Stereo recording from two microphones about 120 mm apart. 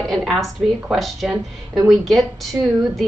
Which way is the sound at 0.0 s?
Centre (ahead or behind).